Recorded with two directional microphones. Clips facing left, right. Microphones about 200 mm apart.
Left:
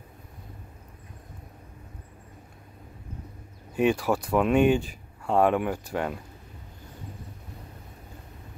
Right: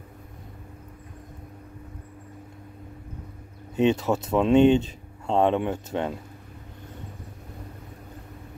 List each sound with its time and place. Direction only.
3.7 s speech: 20° right (ahead or behind)